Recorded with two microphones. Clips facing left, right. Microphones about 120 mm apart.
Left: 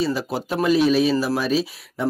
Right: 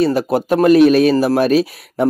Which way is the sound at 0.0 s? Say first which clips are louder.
Right 8 dB; 55° right (ahead or behind).